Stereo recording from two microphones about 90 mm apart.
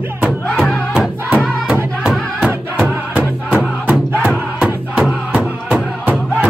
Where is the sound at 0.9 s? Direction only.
5° right (ahead or behind).